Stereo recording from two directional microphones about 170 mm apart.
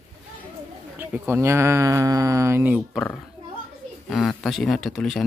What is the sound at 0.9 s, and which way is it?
Speech, 10° right (ahead or behind).